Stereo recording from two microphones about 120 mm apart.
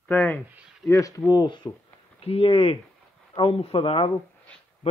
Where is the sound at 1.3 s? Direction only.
35° left (ahead or behind).